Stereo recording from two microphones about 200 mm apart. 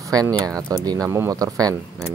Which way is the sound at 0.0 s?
20° right (ahead or behind).